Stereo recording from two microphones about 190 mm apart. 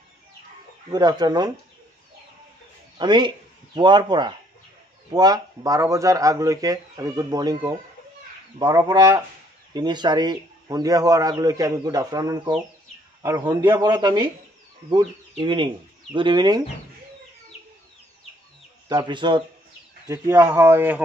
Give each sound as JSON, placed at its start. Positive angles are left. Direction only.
{"t": 0.8, "sound": "speech", "side_deg": -20}
{"t": 3.0, "sound": "speech", "side_deg": -25}
{"t": 18.9, "sound": "speech", "side_deg": -25}
{"t": 20.1, "sound": "speech", "side_deg": -15}